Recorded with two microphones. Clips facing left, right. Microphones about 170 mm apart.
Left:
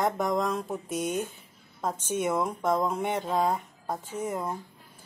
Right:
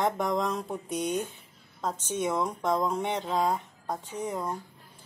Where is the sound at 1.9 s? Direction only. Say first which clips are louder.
Left 3 dB; 50° left (ahead or behind).